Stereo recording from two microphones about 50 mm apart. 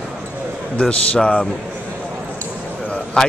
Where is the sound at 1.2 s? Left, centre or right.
Centre.